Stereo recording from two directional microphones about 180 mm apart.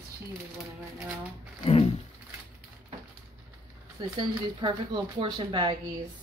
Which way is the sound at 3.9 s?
25° right (ahead or behind).